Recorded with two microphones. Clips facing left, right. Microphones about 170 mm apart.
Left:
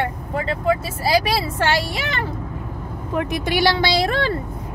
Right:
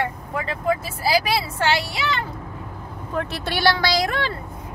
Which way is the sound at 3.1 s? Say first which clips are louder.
Left 4 dB; 15° left (ahead or behind).